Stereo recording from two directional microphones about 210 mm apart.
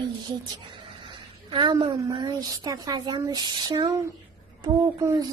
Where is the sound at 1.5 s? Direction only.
20° right (ahead or behind).